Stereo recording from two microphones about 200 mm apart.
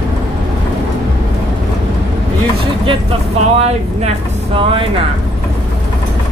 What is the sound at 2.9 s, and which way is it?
Vehicle, 30° right (ahead or behind).